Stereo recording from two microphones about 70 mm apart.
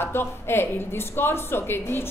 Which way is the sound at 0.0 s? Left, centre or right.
Left.